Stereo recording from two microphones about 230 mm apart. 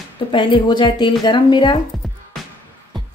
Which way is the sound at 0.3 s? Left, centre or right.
Left.